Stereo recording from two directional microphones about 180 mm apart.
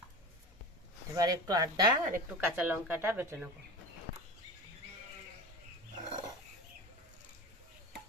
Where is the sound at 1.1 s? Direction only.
20° right (ahead or behind).